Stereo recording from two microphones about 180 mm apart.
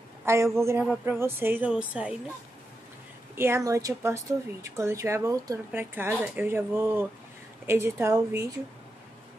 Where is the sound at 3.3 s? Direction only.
15° right (ahead or behind).